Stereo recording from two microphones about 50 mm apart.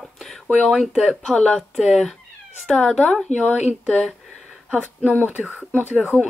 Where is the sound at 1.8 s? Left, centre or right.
Centre.